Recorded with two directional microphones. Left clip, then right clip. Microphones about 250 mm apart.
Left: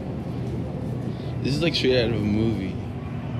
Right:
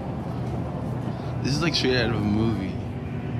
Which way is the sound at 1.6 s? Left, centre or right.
Centre.